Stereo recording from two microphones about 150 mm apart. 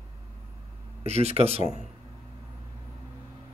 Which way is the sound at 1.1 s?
45° right (ahead or behind).